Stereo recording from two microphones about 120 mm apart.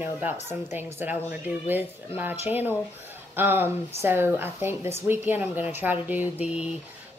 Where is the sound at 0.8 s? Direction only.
15° right (ahead or behind).